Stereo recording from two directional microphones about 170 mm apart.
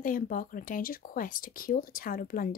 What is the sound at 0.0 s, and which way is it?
Speech, 55° left (ahead or behind).